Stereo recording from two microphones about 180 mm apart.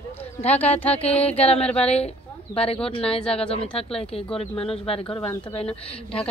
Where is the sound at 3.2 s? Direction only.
5° left (ahead or behind).